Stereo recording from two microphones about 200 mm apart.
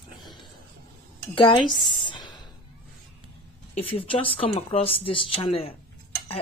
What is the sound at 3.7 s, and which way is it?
Speech, 30° left (ahead or behind).